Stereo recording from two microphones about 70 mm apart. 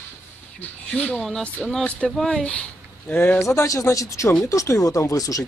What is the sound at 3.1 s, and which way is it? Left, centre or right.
Speech, left.